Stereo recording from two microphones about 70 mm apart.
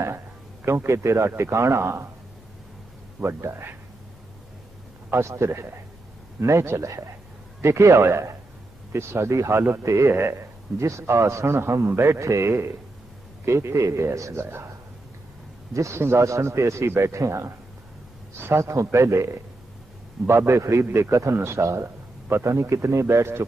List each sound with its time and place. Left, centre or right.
0.7 s a man's voice: right
3.3 s a man's voice: right
5.1 s a man's voice: right
15.7 s a man's voice: right